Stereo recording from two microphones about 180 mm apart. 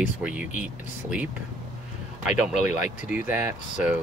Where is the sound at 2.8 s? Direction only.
40° left (ahead or behind).